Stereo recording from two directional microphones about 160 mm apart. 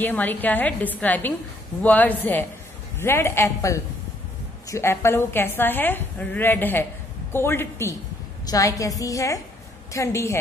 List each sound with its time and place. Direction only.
0.0 s a woman's voice: 10° left (ahead or behind)